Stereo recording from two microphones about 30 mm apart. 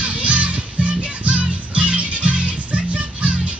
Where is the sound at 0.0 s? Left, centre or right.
Right.